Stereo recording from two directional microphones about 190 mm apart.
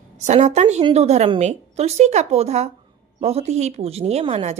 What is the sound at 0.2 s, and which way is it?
Speech, 35° right (ahead or behind).